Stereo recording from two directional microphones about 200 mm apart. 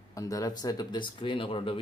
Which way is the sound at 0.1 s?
15° left (ahead or behind).